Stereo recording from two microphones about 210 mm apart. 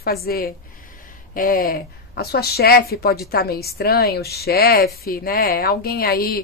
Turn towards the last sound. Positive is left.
turn(degrees=45)  # may be behind; listen again after turning